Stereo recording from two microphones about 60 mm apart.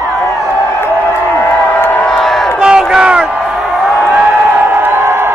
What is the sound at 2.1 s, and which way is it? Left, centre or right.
Crowd, centre.